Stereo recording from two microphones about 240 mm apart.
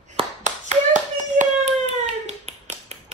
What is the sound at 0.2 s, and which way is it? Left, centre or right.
Clapping, right.